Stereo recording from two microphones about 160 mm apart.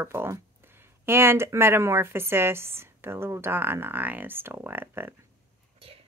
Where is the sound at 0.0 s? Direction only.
15° right (ahead or behind).